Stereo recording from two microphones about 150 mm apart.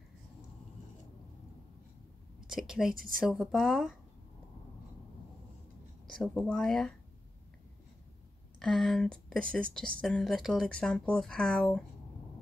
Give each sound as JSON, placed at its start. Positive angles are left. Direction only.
{"t": 2.4, "sound": "a woman's voice", "side_deg": -5}
{"t": 2.9, "sound": "a woman's voice", "side_deg": -70}
{"t": 3.2, "sound": "speech", "side_deg": 0}
{"t": 6.0, "sound": "speech", "side_deg": 0}
{"t": 8.5, "sound": "speech", "side_deg": 0}